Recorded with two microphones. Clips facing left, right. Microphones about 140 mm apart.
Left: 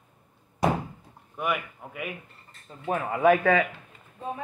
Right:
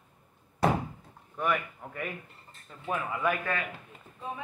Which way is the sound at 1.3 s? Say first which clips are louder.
Left 1 dB; 10° left (ahead or behind).